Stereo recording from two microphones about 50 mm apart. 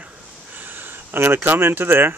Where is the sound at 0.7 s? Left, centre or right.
Right.